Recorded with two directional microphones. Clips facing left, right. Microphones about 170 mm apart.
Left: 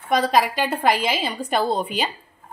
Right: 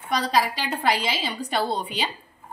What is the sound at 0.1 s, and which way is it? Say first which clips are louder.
A woman's voice: left 4 dB; 50° left (ahead or behind).